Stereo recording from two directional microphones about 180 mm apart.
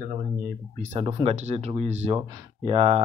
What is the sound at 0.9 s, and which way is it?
Speech, 30° right (ahead or behind).